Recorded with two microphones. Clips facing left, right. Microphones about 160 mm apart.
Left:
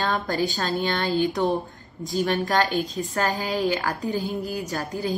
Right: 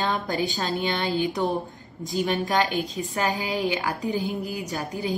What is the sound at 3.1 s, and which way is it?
A woman's voice, 20° right (ahead or behind).